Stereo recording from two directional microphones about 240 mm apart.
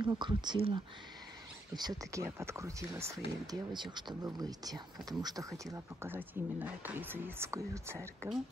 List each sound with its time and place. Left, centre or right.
0.0 s speech: centre